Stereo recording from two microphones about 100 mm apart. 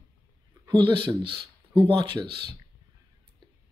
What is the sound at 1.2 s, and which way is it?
Speech, 65° right (ahead or behind).